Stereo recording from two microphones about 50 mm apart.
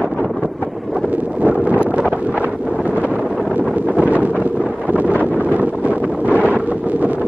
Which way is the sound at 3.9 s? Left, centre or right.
Right.